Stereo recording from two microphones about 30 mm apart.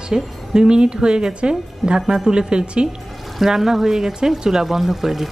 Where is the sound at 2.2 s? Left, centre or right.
Right.